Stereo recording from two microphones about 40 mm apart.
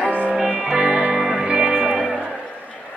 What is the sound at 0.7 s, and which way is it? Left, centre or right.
Music, centre.